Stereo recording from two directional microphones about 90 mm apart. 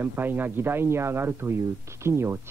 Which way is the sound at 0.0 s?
20° right (ahead or behind).